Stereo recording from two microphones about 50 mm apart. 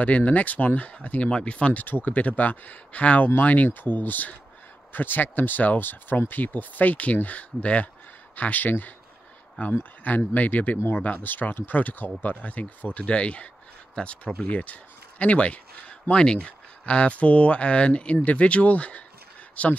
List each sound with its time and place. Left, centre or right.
0.0 s speech: left
13.0 s speech: left